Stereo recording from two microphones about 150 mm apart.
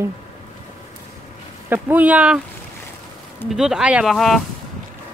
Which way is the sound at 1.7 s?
10° right (ahead or behind).